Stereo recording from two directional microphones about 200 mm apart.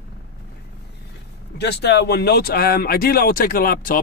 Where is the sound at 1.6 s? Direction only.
55° left (ahead or behind).